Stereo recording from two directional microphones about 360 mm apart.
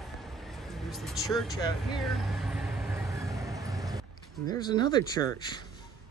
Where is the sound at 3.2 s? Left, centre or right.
Centre.